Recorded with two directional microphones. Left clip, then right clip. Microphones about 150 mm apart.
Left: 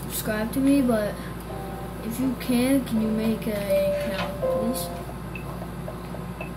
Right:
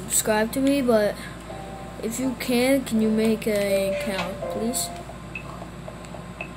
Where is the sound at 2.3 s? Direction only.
60° right (ahead or behind).